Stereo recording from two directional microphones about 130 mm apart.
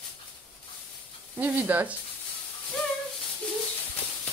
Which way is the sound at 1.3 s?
15° right (ahead or behind).